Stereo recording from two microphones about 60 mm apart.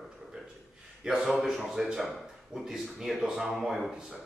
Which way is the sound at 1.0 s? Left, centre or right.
Centre.